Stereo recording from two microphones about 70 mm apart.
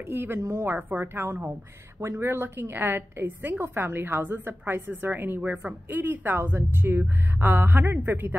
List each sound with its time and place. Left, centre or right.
0.1 s a woman's voice: right
0.7 s a woman's voice: right